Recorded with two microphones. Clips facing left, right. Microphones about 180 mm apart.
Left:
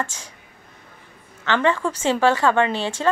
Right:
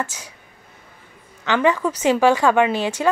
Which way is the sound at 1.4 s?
10° right (ahead or behind).